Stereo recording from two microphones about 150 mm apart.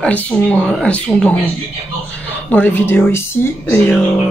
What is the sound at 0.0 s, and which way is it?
Speech, 10° left (ahead or behind).